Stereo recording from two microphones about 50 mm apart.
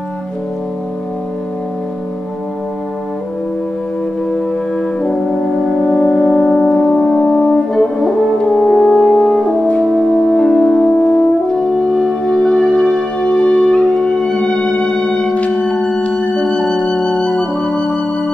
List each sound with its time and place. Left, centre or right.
5.9 s brass instrument: centre
8.4 s french horn: centre
15.3 s music: left